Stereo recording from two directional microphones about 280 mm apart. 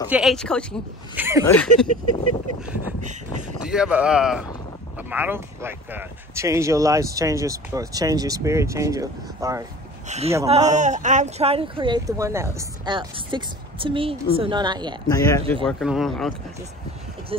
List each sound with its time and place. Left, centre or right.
0.1 s speech: centre
1.1 s speech: centre
1.4 s speech: centre
3.0 s a sound: right
3.6 s speech: centre
10.0 s a man's voice: right
15.0 s speech: centre
17.3 s speech: centre